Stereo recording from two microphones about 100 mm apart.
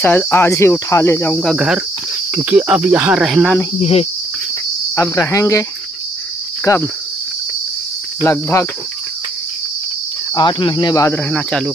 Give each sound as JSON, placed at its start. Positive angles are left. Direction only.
{"t": 0.0, "sound": "speech", "side_deg": 20}
{"t": 1.5, "sound": "cricket", "side_deg": -5}
{"t": 3.8, "sound": "cricket", "side_deg": 90}
{"t": 4.9, "sound": "speech", "side_deg": 30}
{"t": 6.6, "sound": "cricket", "side_deg": 30}
{"t": 8.2, "sound": "speech", "side_deg": 25}
{"t": 10.3, "sound": "speech", "side_deg": 50}
{"t": 11.1, "sound": "speech", "side_deg": 10}